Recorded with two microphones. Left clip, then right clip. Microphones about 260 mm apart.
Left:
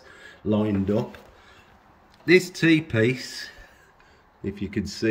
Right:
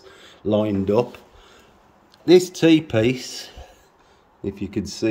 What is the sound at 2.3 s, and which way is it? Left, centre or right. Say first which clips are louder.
Speech: right 4 dB; right.